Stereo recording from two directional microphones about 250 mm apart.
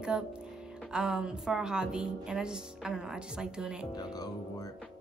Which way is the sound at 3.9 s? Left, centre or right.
Centre.